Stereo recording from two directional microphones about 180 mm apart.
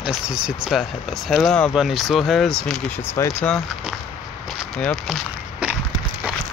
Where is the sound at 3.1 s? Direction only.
15° left (ahead or behind).